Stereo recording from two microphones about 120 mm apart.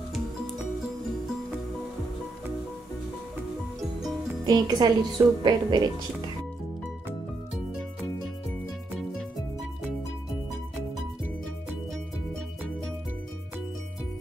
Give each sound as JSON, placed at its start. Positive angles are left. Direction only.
{"t": 4.5, "sound": "a woman's voice", "side_deg": -35}